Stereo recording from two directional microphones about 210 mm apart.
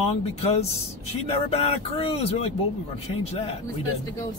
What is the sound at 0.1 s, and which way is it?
Speech, 30° left (ahead or behind).